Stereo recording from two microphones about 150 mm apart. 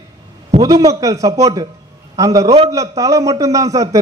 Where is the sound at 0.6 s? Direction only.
25° right (ahead or behind).